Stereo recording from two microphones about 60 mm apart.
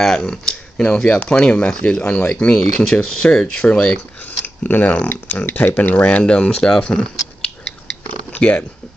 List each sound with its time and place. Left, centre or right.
0.0 s speech: centre
2.5 s speech: centre
4.3 s speech: left
6.0 s speech: centre
8.3 s a sound: left